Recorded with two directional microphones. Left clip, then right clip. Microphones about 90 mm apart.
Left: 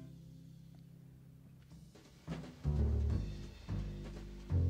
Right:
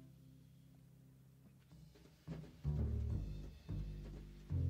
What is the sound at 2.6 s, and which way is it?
Music, 35° right (ahead or behind).